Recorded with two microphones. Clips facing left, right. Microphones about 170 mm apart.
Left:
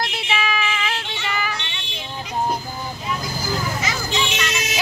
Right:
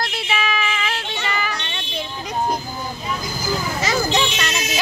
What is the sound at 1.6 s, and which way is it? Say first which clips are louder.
Vehicle: right 6 dB; 40° right (ahead or behind).